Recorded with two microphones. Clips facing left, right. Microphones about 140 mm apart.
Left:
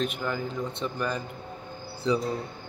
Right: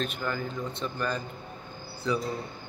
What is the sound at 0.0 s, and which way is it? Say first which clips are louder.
A man's voice: left 2 dB; 15° left (ahead or behind).